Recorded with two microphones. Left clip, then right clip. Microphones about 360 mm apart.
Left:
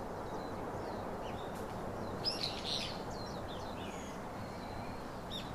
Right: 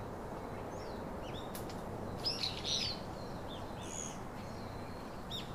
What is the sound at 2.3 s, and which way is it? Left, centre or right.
Bird, centre.